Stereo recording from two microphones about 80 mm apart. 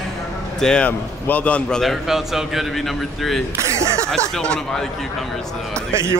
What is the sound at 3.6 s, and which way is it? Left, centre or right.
Speech, right.